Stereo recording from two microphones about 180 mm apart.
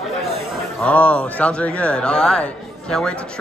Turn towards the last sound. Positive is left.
turn(degrees=5)  # may be behind; listen again after turning